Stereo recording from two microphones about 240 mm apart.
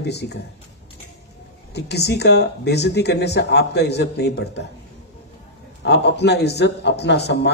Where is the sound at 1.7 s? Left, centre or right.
Left.